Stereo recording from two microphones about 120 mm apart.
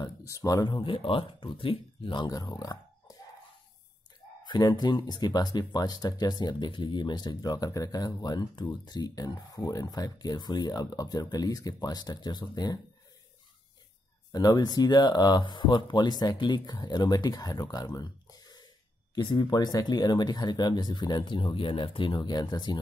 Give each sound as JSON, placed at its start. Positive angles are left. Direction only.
{"t": 0.0, "sound": "speech", "side_deg": 25}
{"t": 4.5, "sound": "speech", "side_deg": 35}
{"t": 14.3, "sound": "speech", "side_deg": 35}